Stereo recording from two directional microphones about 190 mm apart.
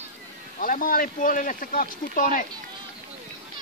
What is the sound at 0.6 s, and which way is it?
Speech, 50° left (ahead or behind).